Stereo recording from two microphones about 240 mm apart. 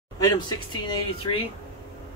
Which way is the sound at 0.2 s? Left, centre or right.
Centre.